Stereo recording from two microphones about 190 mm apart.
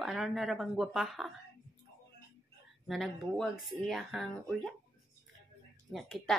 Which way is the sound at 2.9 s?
Centre (ahead or behind).